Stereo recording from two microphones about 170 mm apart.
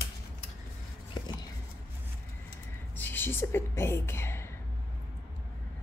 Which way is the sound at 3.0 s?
10° left (ahead or behind).